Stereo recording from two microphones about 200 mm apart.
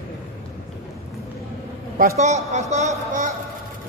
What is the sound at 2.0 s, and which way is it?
Speech, 40° right (ahead or behind).